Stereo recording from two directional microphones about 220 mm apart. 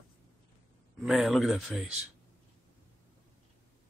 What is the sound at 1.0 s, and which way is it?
Speech, centre (ahead or behind).